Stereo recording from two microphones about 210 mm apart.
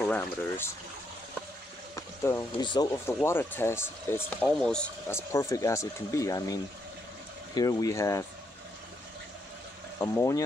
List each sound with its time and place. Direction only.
0.0 s speech: 10° left (ahead or behind)
2.0 s speech: 15° left (ahead or behind)
9.9 s speech: 15° left (ahead or behind)